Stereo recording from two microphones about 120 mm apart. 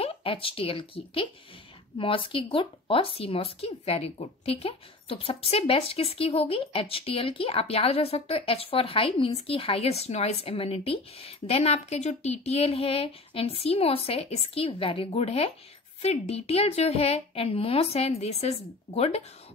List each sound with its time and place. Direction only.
0.0 s a woman's voice: 50° left (ahead or behind)